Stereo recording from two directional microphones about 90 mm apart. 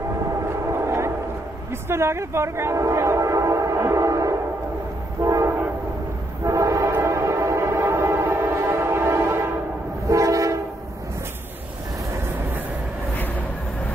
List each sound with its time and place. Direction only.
0.5 s vehicle: 30° right (ahead or behind)
1.7 s train: 30° right (ahead or behind)
5.2 s train horn: 35° right (ahead or behind)
6.4 s train: 35° right (ahead or behind)